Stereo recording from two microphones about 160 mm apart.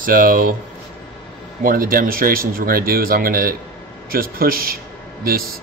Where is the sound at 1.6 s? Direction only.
60° right (ahead or behind).